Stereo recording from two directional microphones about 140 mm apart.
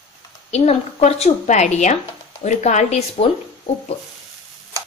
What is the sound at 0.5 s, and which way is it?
A woman's voice, 50° left (ahead or behind).